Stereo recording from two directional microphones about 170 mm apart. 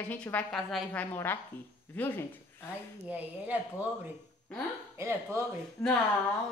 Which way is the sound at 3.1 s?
10° right (ahead or behind).